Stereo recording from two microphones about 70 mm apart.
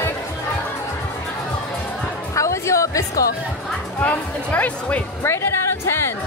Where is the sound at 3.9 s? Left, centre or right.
Left.